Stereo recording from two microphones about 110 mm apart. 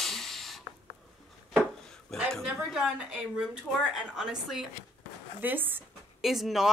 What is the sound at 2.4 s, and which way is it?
Speech, 5° right (ahead or behind).